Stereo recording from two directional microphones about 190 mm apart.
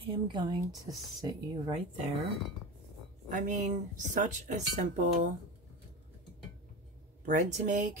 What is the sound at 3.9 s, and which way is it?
Speech, 40° right (ahead or behind).